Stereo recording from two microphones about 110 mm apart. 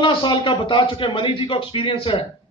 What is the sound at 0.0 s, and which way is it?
A man's voice, 50° left (ahead or behind).